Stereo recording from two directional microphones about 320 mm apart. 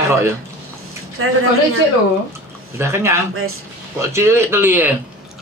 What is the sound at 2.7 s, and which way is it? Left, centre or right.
Speech, centre.